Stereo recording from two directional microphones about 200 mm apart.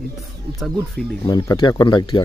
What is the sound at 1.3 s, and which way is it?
Speech, 20° left (ahead or behind).